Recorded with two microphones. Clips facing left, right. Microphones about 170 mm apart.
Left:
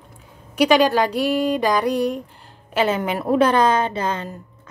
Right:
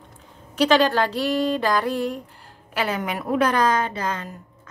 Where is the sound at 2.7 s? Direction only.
25° left (ahead or behind).